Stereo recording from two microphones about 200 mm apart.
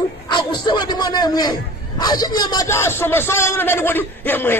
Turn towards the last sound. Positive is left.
turn(degrees=10)  # may be behind; listen again after turning